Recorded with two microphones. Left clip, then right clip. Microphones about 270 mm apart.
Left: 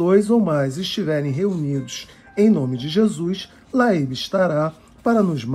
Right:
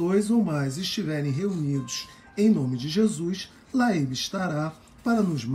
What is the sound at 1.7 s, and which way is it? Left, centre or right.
Speech, centre.